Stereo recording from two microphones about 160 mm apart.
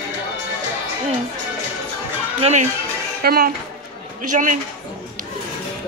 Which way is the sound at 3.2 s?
70° right (ahead or behind).